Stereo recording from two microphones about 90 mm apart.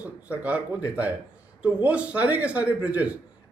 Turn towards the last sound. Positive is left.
turn(degrees=-15)  # may be behind; listen again after turning